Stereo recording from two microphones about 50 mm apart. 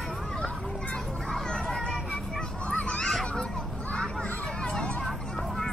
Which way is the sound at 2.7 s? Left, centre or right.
Left.